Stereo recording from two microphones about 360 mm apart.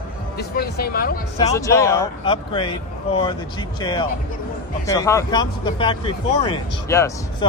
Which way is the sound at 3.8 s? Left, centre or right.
Centre.